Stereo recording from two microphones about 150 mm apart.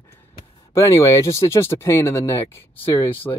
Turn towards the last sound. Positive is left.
turn(degrees=20)  # may be behind; listen again after turning